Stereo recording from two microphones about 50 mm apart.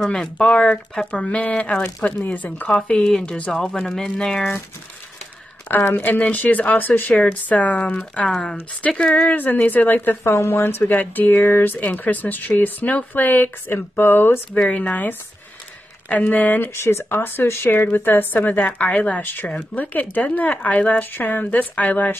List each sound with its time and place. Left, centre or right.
0.1 s a woman's voice: centre; by 2.8 s left
3.0 s speech: centre
6.3 s a woman's voice: left
8.3 s speech: centre
8.8 s a woman's voice: left
10.2 s speech: left
11.8 s a woman's voice: left
13.7 s speech: left
14.5 s a woman's voice: left
16.7 s a woman's voice: left
21.0 s a woman's voice: left